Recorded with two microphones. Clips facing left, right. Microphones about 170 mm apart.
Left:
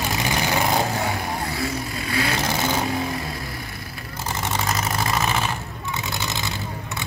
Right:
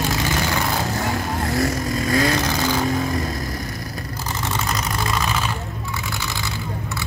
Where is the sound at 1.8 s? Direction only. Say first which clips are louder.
Right 6 dB; 40° right (ahead or behind).